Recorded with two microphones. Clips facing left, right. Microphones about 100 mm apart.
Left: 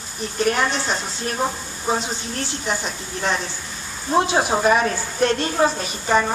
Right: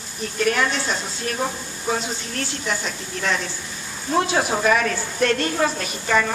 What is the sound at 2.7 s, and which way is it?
A woman's voice, 30° left (ahead or behind).